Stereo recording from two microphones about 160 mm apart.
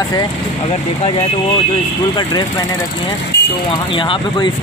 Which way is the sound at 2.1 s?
30° left (ahead or behind).